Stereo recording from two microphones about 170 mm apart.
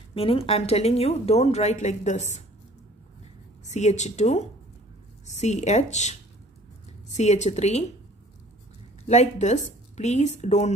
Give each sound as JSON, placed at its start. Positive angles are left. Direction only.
{"t": 0.1, "sound": "a woman's voice", "side_deg": 35}
{"t": 3.6, "sound": "speech", "side_deg": 45}
{"t": 7.2, "sound": "speech", "side_deg": 40}
{"t": 9.0, "sound": "a woman's voice", "side_deg": 40}